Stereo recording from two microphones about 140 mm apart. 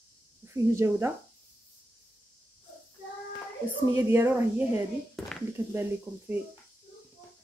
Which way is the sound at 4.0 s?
15° right (ahead or behind).